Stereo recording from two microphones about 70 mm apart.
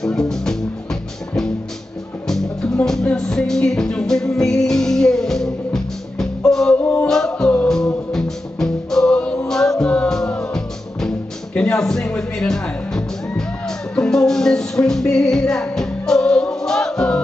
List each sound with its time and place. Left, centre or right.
0.0 s music: centre
2.2 s music: centre
6.8 s music: left
7.1 s music: centre